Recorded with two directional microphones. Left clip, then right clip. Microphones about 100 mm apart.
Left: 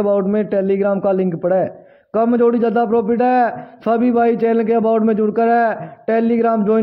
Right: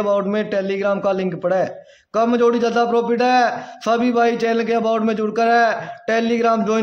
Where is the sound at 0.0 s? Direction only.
35° left (ahead or behind).